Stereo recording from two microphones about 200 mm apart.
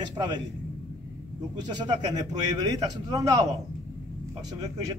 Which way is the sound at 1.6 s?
20° right (ahead or behind).